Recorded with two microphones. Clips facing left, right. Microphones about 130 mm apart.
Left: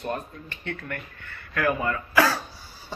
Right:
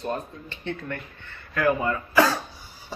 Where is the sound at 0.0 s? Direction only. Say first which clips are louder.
Right 1 dB; 20° right (ahead or behind).